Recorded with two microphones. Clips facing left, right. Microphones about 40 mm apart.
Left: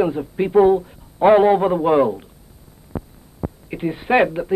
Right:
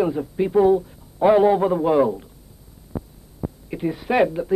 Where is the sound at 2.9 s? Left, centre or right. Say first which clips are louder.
Left 1 dB; left.